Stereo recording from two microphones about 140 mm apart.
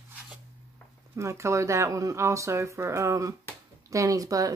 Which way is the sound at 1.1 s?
20° right (ahead or behind).